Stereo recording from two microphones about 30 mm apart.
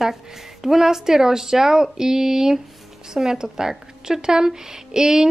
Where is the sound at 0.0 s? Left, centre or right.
Centre.